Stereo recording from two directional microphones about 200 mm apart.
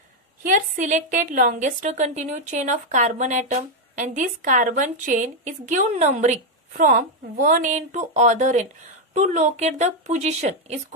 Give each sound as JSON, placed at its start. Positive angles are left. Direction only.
{"t": 0.4, "sound": "a woman's voice", "side_deg": -40}